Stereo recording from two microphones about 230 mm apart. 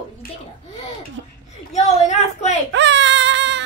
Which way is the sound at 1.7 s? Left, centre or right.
Left.